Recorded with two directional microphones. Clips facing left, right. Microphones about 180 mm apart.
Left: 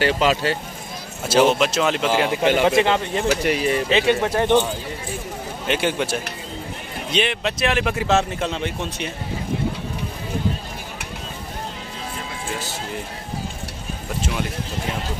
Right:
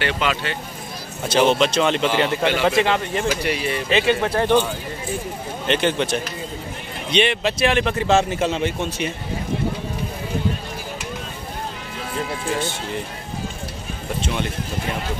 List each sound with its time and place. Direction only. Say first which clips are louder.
0.0 s speech: left 4 dB; 40° left (ahead or behind)
1.2 s speech: even; 5° left (ahead or behind)
2.6 s speech: left 1 dB; 20° left (ahead or behind)
3.4 s speech: left 3 dB; 40° left (ahead or behind)
3.9 s speech: right 2 dB; 20° left (ahead or behind)
5.7 s speech: right 2 dB; 10° left (ahead or behind)
12.5 s speech: right 4 dB; 5° left (ahead or behind)